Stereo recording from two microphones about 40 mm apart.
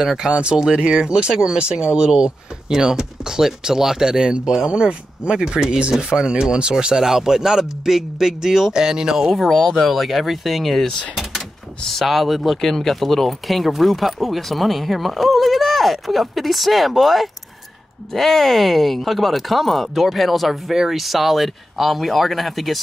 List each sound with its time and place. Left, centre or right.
0.0 s speech: centre
0.3 s speech: right
9.3 s speech: centre